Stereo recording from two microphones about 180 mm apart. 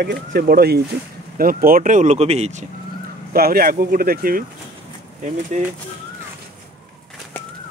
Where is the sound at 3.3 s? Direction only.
55° right (ahead or behind).